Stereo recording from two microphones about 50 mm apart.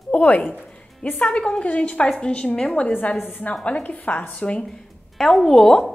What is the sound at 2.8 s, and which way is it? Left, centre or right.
A woman's voice, left.